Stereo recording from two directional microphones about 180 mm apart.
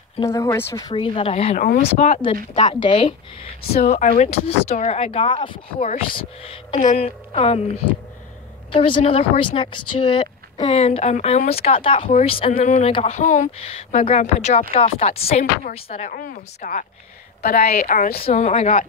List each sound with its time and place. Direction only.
0.2 s speech: 15° left (ahead or behind); by 2.3 s 40° left (ahead or behind)
2.5 s speech: 30° left (ahead or behind)
3.8 s speech: 40° left (ahead or behind)
8.7 s speech: 30° left (ahead or behind)
16.0 s a woman's voice: 50° left (ahead or behind)
18.2 s speech: 35° left (ahead or behind)